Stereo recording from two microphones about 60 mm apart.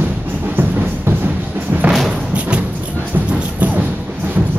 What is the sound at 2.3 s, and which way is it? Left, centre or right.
Music, right.